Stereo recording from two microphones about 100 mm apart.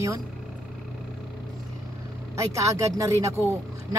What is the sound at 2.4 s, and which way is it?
Speech, 35° right (ahead or behind).